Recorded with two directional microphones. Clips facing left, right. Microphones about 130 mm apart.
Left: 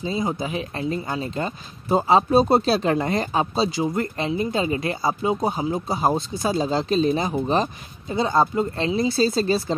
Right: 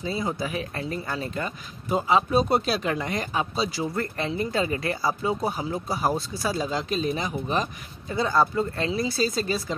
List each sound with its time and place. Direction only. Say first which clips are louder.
0.0 s speech: left 3 dB; 20° left (ahead or behind)